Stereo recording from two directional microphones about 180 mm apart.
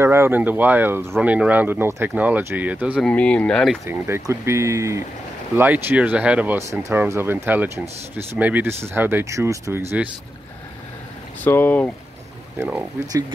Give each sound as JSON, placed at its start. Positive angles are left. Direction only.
{"t": 0.0, "sound": "speech", "side_deg": -15}
{"t": 3.0, "sound": "speech", "side_deg": 5}
{"t": 3.8, "sound": "speech", "side_deg": -15}
{"t": 11.4, "sound": "speech", "side_deg": 10}